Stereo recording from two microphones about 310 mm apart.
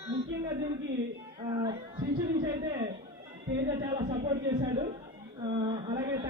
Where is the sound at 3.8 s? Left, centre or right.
Centre.